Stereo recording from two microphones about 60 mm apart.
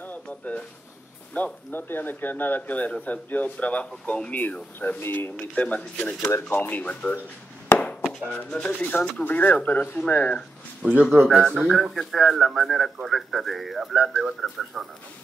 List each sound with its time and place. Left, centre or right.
0.1 s a sound: left
1.3 s speech: left
5.4 s speech: left
8.0 s chop: centre
8.3 s speech: centre
9.0 s speech: left
10.8 s speech: right
11.2 s speech: centre
13.9 s speech: centre